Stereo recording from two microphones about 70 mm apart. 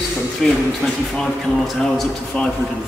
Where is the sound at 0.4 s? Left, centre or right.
Centre.